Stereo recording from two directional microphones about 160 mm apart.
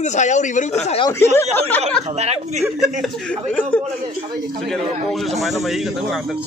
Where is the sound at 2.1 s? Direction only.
45° right (ahead or behind).